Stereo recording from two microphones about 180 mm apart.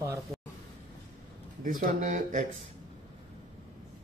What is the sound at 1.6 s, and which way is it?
Speech, 50° right (ahead or behind).